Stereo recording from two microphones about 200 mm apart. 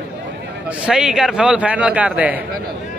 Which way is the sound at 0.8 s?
5° right (ahead or behind).